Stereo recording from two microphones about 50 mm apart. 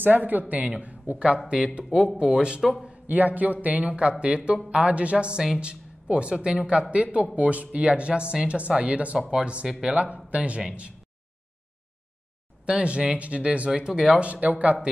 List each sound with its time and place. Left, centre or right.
0.0 s speech: right; by 2.6 s centre
2.8 s speech: right
12.6 s speech: right
13.7 s speech: centre
14.2 s speech: right